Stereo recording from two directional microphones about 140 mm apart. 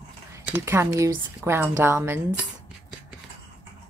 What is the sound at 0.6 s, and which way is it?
Speech, 20° right (ahead or behind).